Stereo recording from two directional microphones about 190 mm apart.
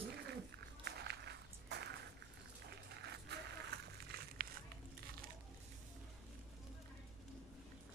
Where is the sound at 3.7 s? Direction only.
60° right (ahead or behind).